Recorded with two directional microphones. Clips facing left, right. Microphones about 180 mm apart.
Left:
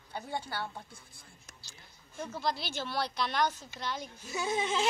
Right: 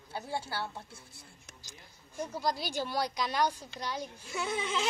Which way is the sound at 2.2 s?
10° right (ahead or behind).